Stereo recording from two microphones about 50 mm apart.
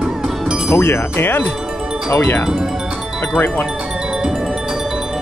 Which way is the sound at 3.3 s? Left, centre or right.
Left.